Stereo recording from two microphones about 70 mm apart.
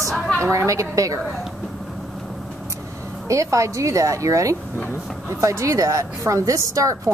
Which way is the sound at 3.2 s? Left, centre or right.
Right.